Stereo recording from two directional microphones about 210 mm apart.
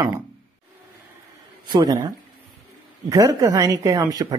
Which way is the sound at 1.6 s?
20° right (ahead or behind).